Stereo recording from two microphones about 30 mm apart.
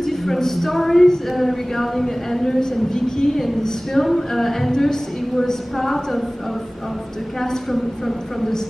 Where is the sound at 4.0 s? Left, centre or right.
Centre.